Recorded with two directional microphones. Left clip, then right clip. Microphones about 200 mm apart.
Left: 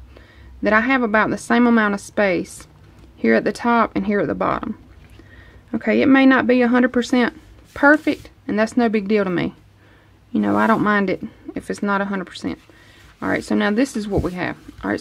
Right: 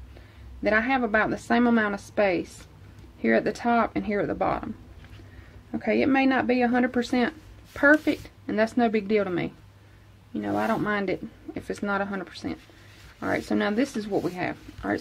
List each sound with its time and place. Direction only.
0.6 s speech: 40° left (ahead or behind)
5.7 s speech: 35° left (ahead or behind)
10.3 s speech: 55° left (ahead or behind); by 15.0 s 35° left (ahead or behind)